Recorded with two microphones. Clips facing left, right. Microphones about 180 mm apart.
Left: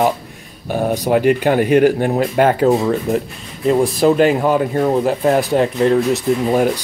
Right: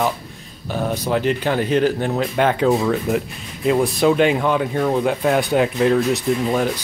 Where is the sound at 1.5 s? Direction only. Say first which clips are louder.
Left 5 dB; 50° left (ahead or behind).